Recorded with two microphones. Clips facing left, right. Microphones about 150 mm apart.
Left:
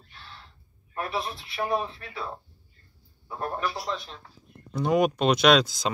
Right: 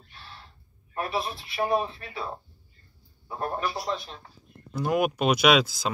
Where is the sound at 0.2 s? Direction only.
5° right (ahead or behind).